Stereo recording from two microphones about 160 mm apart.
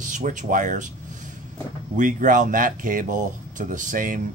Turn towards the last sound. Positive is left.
turn(degrees=-55)  # may be behind; listen again after turning